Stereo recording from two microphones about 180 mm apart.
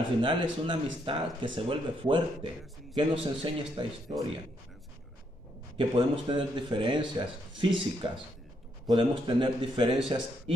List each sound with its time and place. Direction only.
0.2 s a man's voice: 30° right (ahead or behind)
5.8 s a man's voice: 25° right (ahead or behind)